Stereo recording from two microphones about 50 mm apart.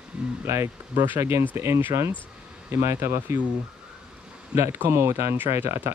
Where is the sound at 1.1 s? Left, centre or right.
Right.